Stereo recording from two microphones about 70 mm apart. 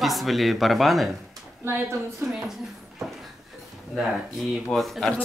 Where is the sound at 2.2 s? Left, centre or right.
Centre.